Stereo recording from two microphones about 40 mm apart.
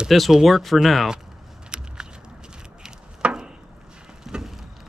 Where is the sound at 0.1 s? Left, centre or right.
Centre.